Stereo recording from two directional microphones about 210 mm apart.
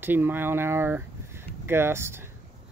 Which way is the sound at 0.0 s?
10° right (ahead or behind).